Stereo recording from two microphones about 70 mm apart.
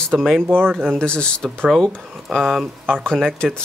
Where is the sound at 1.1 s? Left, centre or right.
Centre.